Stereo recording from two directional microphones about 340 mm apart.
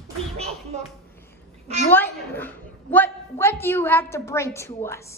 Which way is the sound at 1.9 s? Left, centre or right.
Centre.